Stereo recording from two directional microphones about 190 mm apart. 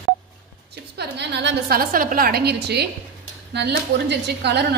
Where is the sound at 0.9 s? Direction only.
65° right (ahead or behind).